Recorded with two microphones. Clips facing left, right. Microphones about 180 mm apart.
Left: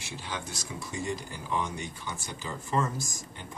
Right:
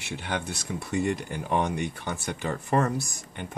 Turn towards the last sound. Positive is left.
turn(degrees=-65)  # may be behind; listen again after turning